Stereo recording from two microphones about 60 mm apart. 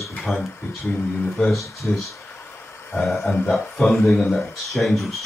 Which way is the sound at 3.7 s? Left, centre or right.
Centre.